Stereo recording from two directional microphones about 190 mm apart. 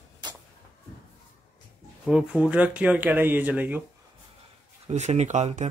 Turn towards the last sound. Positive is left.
turn(degrees=-35)  # may be behind; listen again after turning